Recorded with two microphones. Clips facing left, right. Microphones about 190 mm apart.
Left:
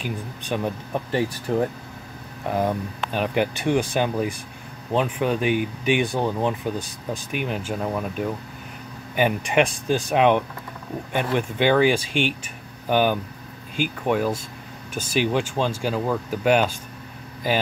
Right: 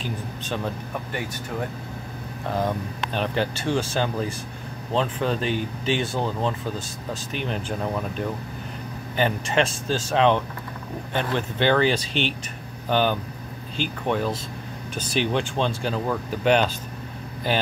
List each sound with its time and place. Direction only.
0.5 s speech: 10° left (ahead or behind)
0.9 s speech: 30° left (ahead or behind)
2.4 s speech: 10° left (ahead or behind)